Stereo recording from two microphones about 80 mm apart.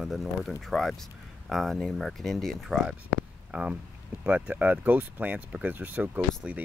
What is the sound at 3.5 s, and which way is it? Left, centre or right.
Speech, centre.